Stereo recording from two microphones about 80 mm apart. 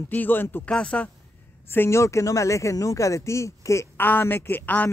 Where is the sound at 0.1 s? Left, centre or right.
Left.